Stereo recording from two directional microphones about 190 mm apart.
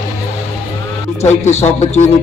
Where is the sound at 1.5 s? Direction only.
35° left (ahead or behind).